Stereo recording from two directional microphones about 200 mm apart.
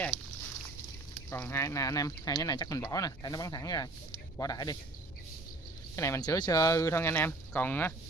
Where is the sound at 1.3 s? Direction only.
10° left (ahead or behind).